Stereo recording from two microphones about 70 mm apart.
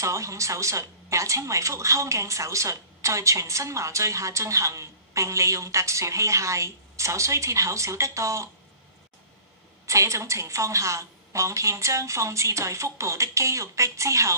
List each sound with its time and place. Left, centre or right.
0.0 s a woman's voice: right
9.8 s a woman's voice: right